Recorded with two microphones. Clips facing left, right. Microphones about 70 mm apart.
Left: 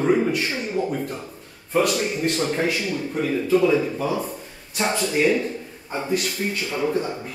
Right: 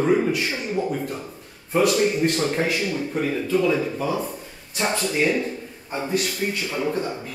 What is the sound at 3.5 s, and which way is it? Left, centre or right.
Speech, centre.